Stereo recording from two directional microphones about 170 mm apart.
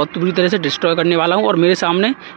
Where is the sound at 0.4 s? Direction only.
5° right (ahead or behind).